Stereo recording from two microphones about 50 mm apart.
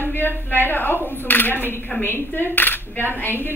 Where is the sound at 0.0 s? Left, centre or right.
Left.